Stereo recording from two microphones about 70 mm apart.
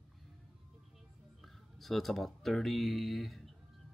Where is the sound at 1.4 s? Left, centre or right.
Centre.